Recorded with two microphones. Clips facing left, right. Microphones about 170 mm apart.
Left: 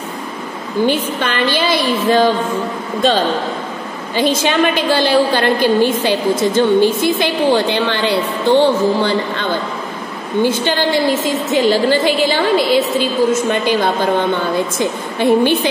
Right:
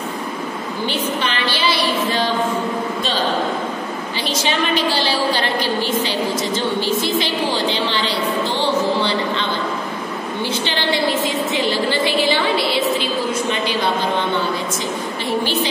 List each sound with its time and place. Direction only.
0.8 s a woman's voice: 50° left (ahead or behind)
4.2 s a woman's voice: 50° left (ahead or behind)